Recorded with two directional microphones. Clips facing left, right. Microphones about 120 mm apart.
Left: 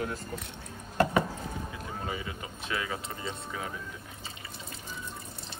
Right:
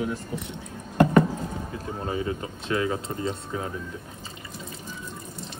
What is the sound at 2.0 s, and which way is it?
Speech, 35° right (ahead or behind).